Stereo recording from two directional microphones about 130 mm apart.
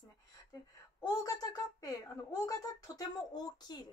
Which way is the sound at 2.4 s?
25° left (ahead or behind).